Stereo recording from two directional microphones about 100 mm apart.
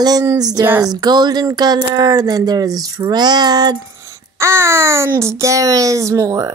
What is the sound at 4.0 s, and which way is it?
A child's voice, 30° right (ahead or behind).